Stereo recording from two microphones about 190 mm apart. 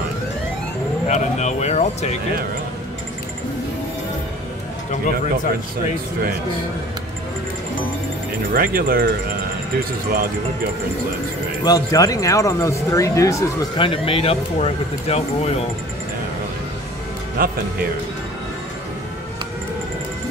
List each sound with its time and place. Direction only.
1.0 s speech: 35° left (ahead or behind)
8.5 s speech: 50° right (ahead or behind)
11.6 s speech: 20° left (ahead or behind)
13.7 s speech: 30° left (ahead or behind)
17.4 s speech: 50° right (ahead or behind)